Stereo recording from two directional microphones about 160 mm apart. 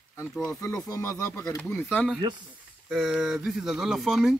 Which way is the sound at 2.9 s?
5° right (ahead or behind).